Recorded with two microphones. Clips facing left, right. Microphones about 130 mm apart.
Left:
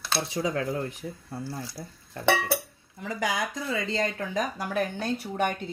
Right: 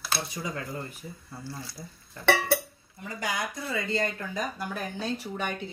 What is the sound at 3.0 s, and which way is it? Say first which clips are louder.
Speech: left 6 dB; 90° left.